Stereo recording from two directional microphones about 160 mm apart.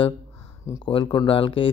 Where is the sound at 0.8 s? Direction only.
30° left (ahead or behind).